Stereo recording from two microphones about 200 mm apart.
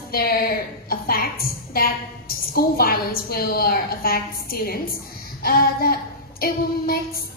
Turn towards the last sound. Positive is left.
turn(degrees=50)  # may be behind; listen again after turning